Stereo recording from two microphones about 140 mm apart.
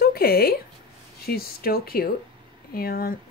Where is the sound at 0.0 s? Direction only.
90° left.